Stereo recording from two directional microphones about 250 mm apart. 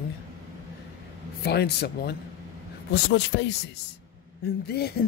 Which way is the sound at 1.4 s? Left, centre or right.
Left.